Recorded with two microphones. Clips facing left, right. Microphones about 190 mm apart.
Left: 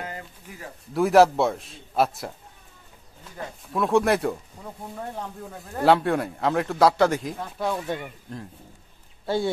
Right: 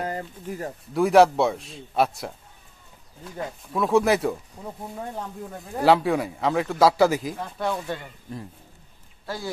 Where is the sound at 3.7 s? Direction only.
Centre (ahead or behind).